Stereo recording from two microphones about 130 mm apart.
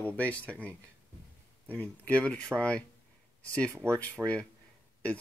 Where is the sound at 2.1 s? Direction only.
10° left (ahead or behind).